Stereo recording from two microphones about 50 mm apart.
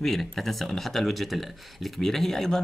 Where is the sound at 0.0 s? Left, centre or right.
Centre.